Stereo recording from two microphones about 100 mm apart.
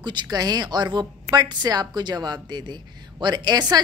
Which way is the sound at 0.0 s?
45° right (ahead or behind).